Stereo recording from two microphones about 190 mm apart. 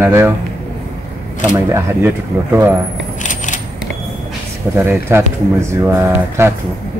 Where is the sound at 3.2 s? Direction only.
40° left (ahead or behind).